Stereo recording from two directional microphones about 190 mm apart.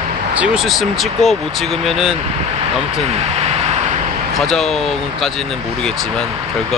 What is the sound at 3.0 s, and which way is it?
Vehicle, 35° right (ahead or behind).